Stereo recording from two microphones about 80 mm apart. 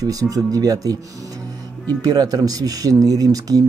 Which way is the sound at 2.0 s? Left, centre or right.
Right.